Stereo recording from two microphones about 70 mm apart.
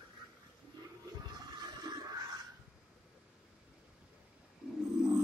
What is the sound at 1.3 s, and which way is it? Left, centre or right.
Toilet flush, right.